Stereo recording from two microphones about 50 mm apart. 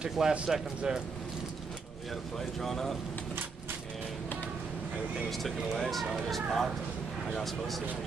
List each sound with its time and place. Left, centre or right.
0.0 s speech: centre
2.3 s speech: centre
5.3 s speech: centre